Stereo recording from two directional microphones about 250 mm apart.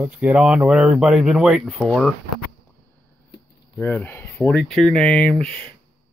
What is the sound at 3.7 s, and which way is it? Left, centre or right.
Speech, centre.